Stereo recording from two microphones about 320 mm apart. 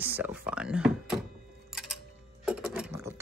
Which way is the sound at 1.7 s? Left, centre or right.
Centre.